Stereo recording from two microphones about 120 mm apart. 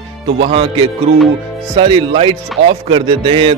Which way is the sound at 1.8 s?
45° right (ahead or behind).